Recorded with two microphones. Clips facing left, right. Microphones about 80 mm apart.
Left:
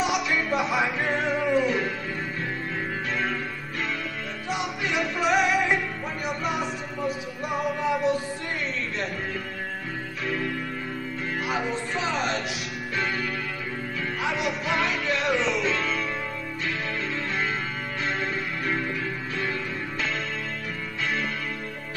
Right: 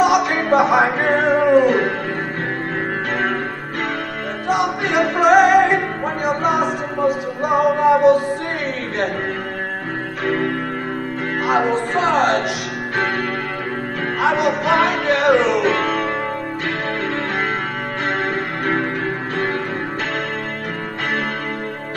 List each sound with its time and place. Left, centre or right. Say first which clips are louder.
0.0 s music: right 10 dB; right
4.5 s music: right 10 dB; right
10.2 s music: right 9 dB; right
14.2 s music: right 12 dB; right
18.0 s music: right 7 dB; right